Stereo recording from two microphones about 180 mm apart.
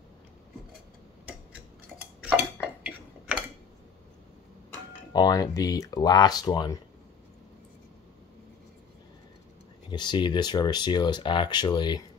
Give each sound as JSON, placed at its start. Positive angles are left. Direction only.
{"t": 2.6, "sound": "dishes", "side_deg": -5}
{"t": 5.1, "sound": "speech", "side_deg": 20}
{"t": 9.8, "sound": "speech", "side_deg": 25}